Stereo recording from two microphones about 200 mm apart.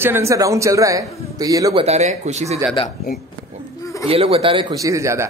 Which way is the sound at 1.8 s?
35° right (ahead or behind).